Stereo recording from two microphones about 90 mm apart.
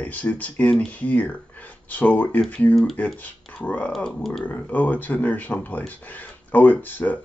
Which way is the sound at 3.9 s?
Centre (ahead or behind).